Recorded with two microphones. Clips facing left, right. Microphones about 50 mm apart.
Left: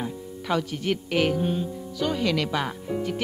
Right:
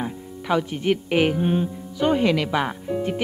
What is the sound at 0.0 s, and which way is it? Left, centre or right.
A woman's voice, centre.